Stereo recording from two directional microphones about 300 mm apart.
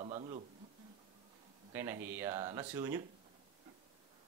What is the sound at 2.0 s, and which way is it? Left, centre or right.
Speech, centre.